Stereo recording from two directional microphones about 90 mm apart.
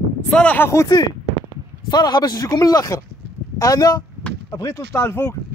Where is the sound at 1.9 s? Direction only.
50° left (ahead or behind).